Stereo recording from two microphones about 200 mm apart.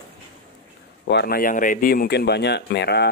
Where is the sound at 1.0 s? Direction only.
55° left (ahead or behind).